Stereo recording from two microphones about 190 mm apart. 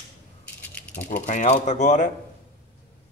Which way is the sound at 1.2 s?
40° left (ahead or behind).